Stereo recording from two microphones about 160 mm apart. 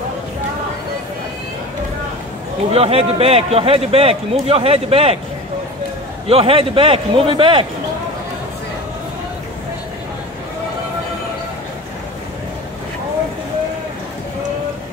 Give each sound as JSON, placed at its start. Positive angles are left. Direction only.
{"t": 2.7, "sound": "a man's voice", "side_deg": -40}
{"t": 6.2, "sound": "a man's voice", "side_deg": -35}